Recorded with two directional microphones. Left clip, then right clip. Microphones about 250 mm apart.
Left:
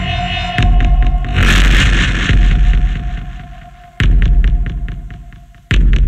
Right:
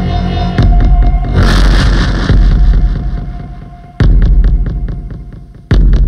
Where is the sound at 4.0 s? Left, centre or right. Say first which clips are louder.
Right 2 dB; centre.